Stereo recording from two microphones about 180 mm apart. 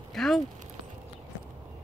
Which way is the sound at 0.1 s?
Centre (ahead or behind).